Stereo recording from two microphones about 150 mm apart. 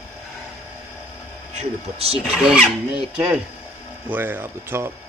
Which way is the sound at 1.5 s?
45° right (ahead or behind).